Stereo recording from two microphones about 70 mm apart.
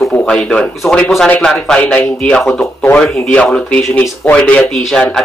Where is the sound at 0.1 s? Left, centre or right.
Centre.